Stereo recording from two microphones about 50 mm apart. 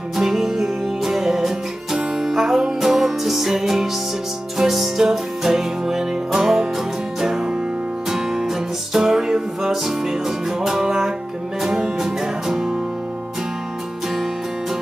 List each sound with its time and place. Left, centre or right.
0.1 s music: centre